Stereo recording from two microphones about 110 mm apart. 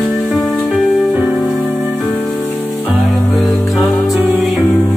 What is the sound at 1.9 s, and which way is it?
Music, 5° left (ahead or behind).